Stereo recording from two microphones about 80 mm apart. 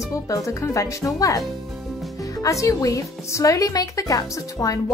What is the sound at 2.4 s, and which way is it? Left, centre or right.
Speech, left.